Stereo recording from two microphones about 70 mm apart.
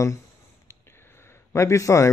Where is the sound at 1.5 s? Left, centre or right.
Left.